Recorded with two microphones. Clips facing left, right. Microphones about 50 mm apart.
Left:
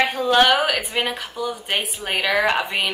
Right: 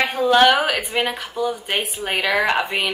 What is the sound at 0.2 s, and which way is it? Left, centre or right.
Speech, centre.